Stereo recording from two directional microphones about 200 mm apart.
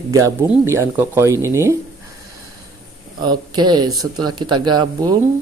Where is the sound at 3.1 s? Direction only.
20° right (ahead or behind).